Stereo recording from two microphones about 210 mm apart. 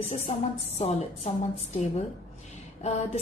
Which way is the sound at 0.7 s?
30° left (ahead or behind).